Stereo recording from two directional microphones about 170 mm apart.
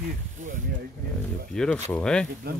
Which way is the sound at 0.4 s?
50° right (ahead or behind).